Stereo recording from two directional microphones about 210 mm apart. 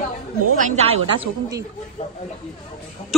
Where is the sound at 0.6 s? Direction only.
35° right (ahead or behind).